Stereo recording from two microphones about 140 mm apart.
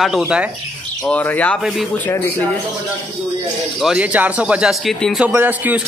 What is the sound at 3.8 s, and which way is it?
Speech, 10° right (ahead or behind).